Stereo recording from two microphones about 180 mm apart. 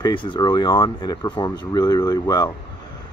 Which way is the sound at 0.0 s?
25° left (ahead or behind).